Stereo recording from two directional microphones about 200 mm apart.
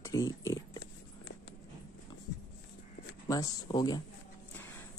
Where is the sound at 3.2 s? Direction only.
20° left (ahead or behind).